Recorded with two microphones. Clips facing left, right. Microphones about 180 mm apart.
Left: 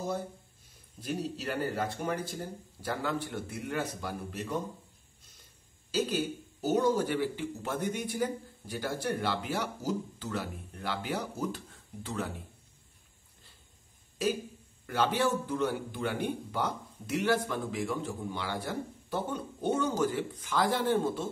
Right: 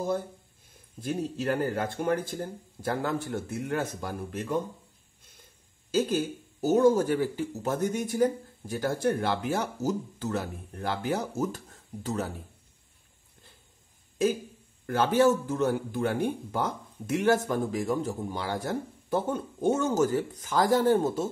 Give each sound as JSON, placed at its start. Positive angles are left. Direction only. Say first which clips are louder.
{"t": 1.0, "sound": "speech", "louder": "right 5 dB", "side_deg": -50}
{"t": 5.9, "sound": "speech", "louder": "right 4 dB", "side_deg": -45}
{"t": 14.9, "sound": "speech", "louder": "right 6 dB", "side_deg": -45}